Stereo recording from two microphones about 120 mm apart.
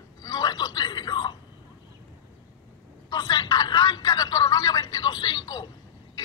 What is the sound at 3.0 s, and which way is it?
Telephone, 40° left (ahead or behind).